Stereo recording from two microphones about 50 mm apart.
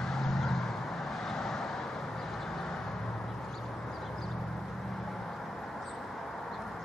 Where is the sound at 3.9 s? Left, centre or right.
Centre.